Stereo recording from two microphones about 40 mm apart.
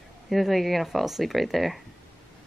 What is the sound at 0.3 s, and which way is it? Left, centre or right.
Speech, centre.